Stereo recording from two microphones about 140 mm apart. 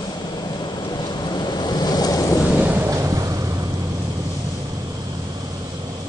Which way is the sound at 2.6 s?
20° right (ahead or behind).